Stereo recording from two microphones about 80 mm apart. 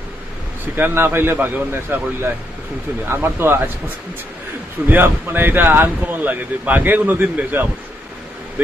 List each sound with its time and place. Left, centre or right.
0.7 s speech: right
4.8 s speech: right